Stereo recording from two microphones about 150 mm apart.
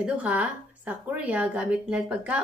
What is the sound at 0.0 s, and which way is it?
A woman's voice, 10° right (ahead or behind).